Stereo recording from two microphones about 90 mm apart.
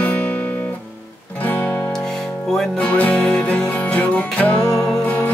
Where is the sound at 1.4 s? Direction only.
15° left (ahead or behind).